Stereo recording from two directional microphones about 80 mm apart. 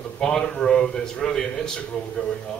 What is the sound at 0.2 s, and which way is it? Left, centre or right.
A man's voice, centre.